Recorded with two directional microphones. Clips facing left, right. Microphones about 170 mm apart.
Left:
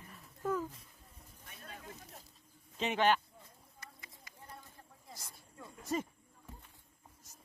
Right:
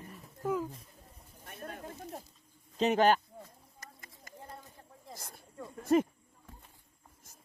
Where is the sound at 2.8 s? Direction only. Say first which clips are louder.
Right 5 dB; 40° right (ahead or behind).